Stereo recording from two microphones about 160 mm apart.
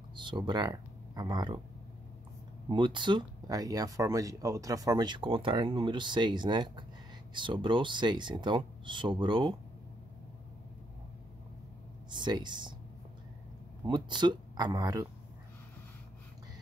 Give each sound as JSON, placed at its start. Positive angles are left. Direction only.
{"t": 0.1, "sound": "speech", "side_deg": -30}
{"t": 2.7, "sound": "speech", "side_deg": -30}
{"t": 12.1, "sound": "speech", "side_deg": -30}
{"t": 13.8, "sound": "speech", "side_deg": -30}